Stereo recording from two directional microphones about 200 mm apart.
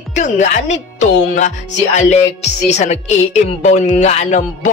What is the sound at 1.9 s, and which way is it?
Speech, 35° left (ahead or behind).